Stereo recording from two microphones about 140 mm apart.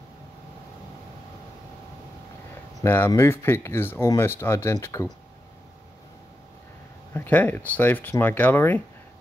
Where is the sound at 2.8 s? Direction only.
15° left (ahead or behind).